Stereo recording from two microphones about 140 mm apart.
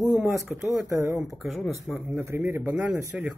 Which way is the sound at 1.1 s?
Centre (ahead or behind).